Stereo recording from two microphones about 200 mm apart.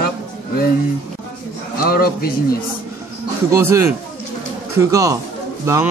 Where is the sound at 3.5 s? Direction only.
15° right (ahead or behind).